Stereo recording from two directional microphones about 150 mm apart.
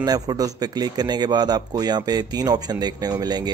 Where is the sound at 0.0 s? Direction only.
25° right (ahead or behind).